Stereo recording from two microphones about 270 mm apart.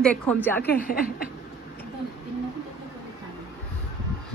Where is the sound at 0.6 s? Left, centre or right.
Left.